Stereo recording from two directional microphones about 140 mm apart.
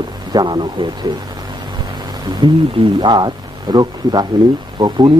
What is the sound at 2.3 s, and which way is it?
Speech, 30° right (ahead or behind).